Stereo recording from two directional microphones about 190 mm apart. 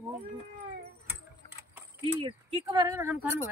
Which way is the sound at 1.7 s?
20° right (ahead or behind).